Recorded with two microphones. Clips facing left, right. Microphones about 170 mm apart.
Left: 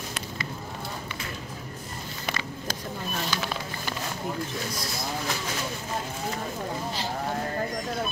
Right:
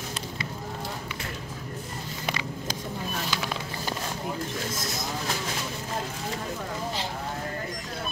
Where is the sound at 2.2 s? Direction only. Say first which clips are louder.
Right 1 dB; 15° right (ahead or behind).